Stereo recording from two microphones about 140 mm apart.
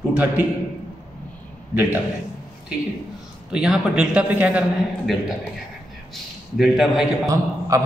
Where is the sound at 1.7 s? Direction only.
10° right (ahead or behind).